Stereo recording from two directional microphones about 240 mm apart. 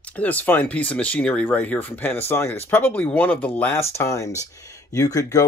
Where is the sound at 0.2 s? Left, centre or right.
Centre.